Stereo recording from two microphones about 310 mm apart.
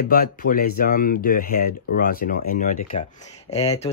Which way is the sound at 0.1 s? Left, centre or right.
Left.